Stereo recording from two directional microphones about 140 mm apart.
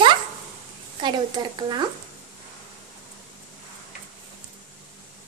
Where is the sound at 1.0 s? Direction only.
30° right (ahead or behind).